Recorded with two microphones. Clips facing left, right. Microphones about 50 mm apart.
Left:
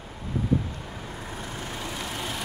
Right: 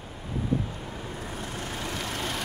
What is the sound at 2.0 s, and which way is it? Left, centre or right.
Vehicle, centre.